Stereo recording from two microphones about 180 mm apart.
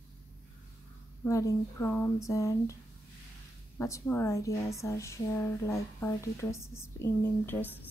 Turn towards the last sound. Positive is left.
turn(degrees=10)  # may be behind; listen again after turning